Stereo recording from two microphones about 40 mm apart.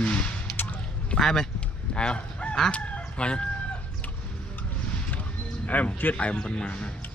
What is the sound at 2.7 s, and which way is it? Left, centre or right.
Chicken, left.